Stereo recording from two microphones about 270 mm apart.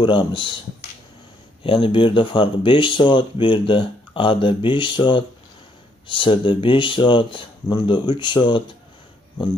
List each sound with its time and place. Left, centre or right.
0.0 s speech: centre
1.6 s speech: centre